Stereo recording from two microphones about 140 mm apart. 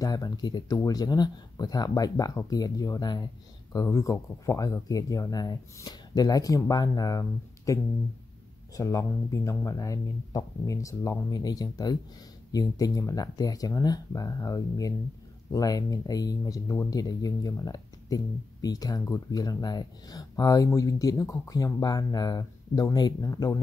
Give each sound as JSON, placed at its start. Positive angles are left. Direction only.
{"t": 0.0, "sound": "speech", "side_deg": 25}